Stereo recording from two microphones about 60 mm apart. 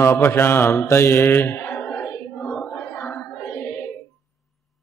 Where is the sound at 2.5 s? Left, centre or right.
Left.